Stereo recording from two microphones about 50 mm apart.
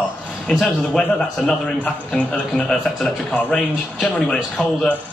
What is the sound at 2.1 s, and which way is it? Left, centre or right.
Speech, left.